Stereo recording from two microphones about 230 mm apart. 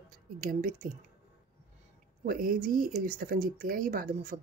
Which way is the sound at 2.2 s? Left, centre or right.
Right.